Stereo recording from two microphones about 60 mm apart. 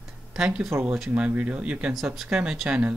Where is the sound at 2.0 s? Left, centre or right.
Centre.